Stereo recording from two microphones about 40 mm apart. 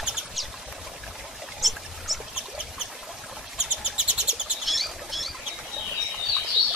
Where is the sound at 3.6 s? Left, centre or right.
Centre.